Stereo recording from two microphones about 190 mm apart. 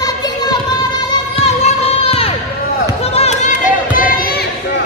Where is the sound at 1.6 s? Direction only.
35° left (ahead or behind); by 4.5 s 50° left (ahead or behind).